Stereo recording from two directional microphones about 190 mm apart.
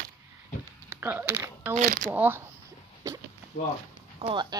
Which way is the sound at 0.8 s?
10° right (ahead or behind).